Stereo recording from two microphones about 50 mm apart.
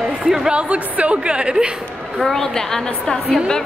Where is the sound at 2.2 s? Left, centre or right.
Centre.